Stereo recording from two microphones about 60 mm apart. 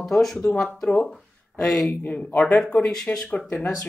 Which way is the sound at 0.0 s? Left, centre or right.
Centre.